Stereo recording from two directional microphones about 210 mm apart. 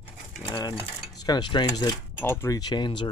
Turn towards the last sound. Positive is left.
turn(degrees=20)  # may be behind; listen again after turning